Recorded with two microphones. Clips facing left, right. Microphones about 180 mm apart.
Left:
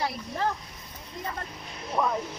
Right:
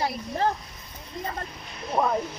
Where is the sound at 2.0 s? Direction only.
50° right (ahead or behind).